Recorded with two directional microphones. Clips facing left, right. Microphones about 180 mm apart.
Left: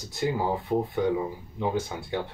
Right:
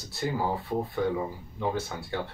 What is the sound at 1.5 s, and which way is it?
Speech, 15° left (ahead or behind).